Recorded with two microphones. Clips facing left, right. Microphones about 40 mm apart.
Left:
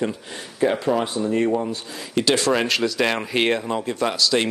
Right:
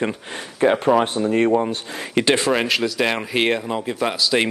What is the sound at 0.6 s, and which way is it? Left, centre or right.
Speech, right.